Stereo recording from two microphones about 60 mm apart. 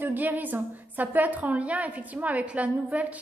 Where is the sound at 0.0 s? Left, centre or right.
Right.